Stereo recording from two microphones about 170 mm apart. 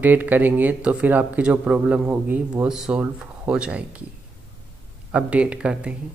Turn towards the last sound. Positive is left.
turn(degrees=-5)  # may be behind; listen again after turning